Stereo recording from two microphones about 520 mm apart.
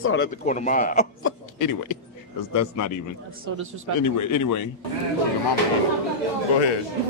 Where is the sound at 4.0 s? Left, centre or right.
Left.